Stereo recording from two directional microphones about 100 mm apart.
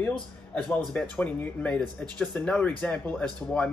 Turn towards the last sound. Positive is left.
turn(degrees=10)  # may be behind; listen again after turning